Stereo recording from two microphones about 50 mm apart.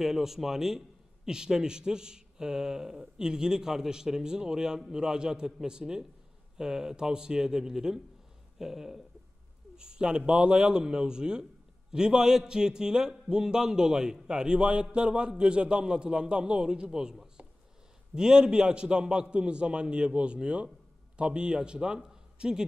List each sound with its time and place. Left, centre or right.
0.0 s a man's voice: centre
9.8 s a man's voice: centre